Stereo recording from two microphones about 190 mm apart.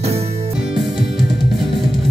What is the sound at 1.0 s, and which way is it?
Music, centre (ahead or behind).